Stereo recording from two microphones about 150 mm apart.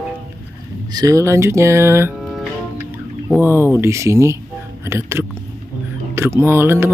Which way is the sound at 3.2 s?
15° right (ahead or behind).